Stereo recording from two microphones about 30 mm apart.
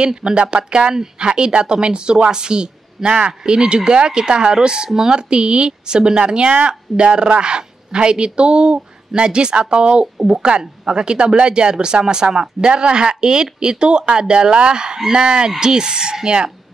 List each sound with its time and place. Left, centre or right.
0.0 s speech: right